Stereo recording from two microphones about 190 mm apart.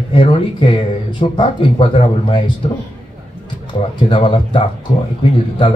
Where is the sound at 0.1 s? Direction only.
30° left (ahead or behind).